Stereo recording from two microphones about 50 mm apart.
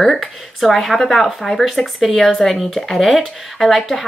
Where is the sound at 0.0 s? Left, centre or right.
Centre.